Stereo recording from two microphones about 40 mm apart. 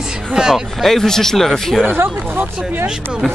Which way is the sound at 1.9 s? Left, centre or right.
Right.